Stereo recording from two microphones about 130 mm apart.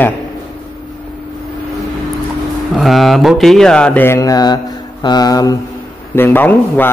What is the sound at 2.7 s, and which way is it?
Mantra, centre (ahead or behind).